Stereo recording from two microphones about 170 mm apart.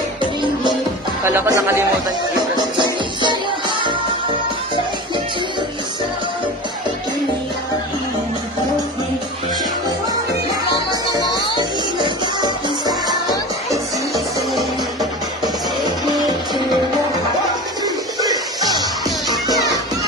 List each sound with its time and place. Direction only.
0.2 s music: 30° right (ahead or behind)
1.2 s speech: 15° right (ahead or behind)
2.5 s music: 25° right (ahead or behind)
10.9 s music: 25° left (ahead or behind)
12.0 s music: 25° right (ahead or behind)
17.8 s music: 20° right (ahead or behind)